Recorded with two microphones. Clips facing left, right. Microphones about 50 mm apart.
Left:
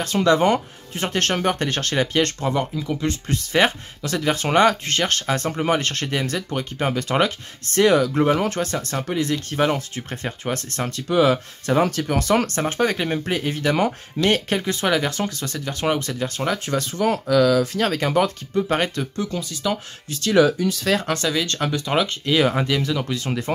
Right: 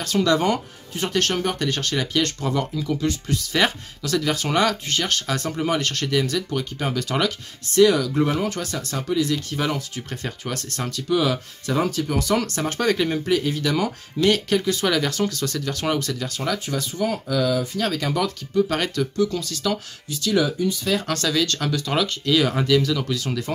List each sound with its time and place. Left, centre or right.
0.0 s speech: left
2.5 s speech: left
3.1 s speech: left
12.6 s speech: left
13.2 s speech: left
17.7 s speech: left
19.3 s speech: centre
20.1 s speech: left
20.6 s speech: left
21.0 s speech: left